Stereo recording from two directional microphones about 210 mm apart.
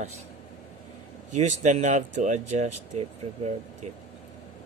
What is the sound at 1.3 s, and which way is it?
Speech, 35° right (ahead or behind).